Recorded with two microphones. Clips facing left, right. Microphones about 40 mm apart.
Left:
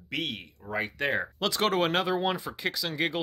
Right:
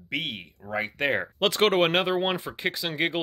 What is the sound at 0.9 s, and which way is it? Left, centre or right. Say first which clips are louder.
Speech: right 5 dB; right.